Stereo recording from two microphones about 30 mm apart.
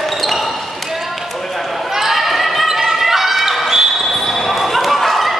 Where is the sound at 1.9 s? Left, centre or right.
Centre.